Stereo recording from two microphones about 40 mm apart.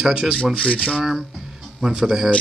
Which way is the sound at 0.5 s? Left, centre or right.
Left.